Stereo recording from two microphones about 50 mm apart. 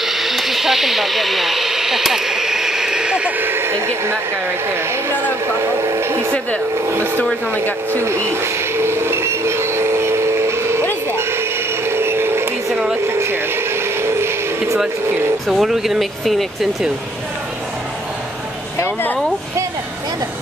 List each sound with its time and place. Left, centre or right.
0.0 s a sound: centre
3.3 s speech: right
5.6 s speech: right
7.9 s speech: right
8.4 s vehicle: right
13.0 s a sound: right
15.5 s speech: centre